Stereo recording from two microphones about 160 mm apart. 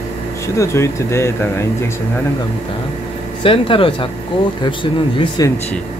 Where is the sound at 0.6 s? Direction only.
15° left (ahead or behind).